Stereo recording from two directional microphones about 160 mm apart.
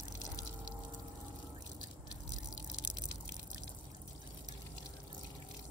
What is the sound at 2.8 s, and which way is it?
Drip, 90° left.